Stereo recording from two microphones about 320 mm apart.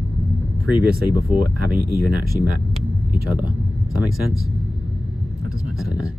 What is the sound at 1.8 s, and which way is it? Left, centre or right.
Speech, right.